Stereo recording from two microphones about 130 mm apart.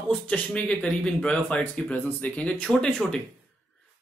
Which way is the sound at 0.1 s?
5° left (ahead or behind).